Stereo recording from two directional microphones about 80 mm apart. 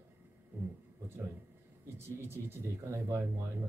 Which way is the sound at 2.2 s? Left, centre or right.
Right.